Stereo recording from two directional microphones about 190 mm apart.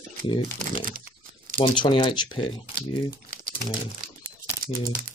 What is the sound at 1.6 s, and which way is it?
Speech, 25° left (ahead or behind).